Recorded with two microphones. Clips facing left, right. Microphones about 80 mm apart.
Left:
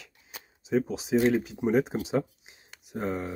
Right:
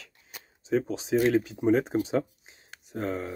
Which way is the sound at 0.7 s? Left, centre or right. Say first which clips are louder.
Even; centre.